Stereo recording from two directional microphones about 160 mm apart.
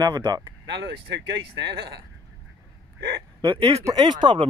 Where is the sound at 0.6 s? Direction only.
90° right.